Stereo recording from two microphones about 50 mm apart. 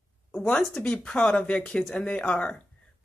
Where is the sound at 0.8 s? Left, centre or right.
Left.